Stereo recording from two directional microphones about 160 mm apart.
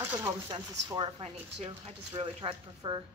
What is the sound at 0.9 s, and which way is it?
Speech, 30° right (ahead or behind).